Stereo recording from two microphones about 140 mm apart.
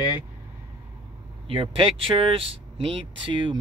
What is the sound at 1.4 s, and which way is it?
Speech, 40° right (ahead or behind).